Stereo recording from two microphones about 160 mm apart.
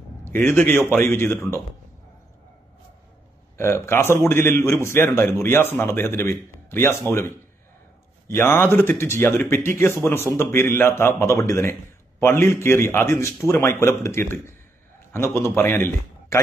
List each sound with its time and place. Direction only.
0.2 s a man's voice: 15° left (ahead or behind)
3.5 s a man's voice: 15° left (ahead or behind)